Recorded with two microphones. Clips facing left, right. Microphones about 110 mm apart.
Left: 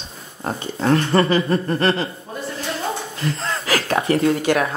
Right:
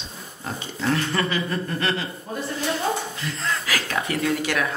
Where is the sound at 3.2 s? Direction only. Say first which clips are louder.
Left 4 dB; 35° left (ahead or behind).